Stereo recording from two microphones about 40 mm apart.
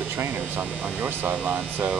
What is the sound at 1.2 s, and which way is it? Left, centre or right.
Speech, right.